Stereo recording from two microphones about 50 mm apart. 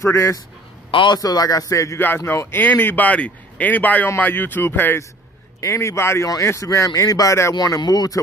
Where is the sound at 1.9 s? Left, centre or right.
Left.